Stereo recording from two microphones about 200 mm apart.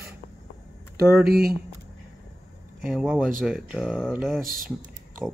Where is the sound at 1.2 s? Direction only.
50° right (ahead or behind).